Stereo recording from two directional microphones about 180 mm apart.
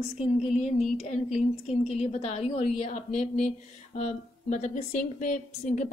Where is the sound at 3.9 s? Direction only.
40° left (ahead or behind).